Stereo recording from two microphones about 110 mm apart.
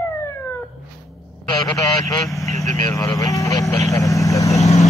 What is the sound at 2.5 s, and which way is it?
Speech, 30° left (ahead or behind).